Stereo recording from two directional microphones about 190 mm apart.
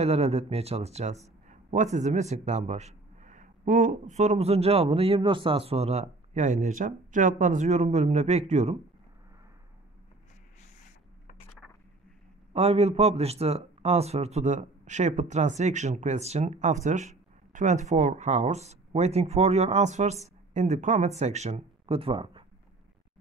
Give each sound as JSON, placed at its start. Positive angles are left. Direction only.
{"t": 0.0, "sound": "a man's voice", "side_deg": -35}
{"t": 12.5, "sound": "a man's voice", "side_deg": -35}